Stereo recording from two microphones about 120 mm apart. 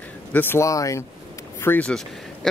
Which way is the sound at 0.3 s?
15° left (ahead or behind).